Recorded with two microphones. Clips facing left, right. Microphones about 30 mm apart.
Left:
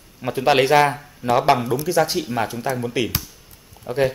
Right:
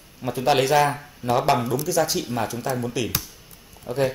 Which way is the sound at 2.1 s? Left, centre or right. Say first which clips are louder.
Left 3 dB; centre.